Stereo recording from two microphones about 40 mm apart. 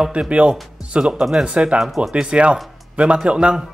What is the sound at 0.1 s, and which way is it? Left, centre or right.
Speech, right.